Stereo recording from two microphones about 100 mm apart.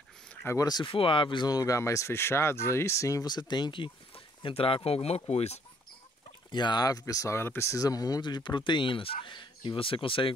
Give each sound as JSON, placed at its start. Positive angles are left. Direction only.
{"t": 0.5, "sound": "speech", "side_deg": 40}
{"t": 0.8, "sound": "speech", "side_deg": 60}
{"t": 6.5, "sound": "speech", "side_deg": 45}